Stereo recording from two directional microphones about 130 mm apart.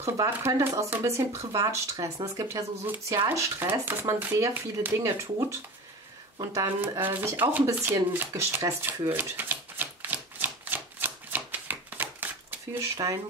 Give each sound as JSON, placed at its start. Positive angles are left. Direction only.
{"t": 0.0, "sound": "speech", "side_deg": -25}
{"t": 6.5, "sound": "shuffling cards", "side_deg": -20}
{"t": 12.9, "sound": "speech", "side_deg": -25}